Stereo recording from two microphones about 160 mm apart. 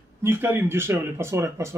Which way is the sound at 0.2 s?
15° right (ahead or behind).